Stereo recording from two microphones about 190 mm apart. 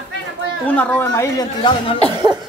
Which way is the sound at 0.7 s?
10° left (ahead or behind).